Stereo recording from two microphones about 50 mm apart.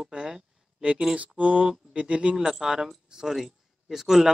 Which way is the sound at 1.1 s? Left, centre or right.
Right.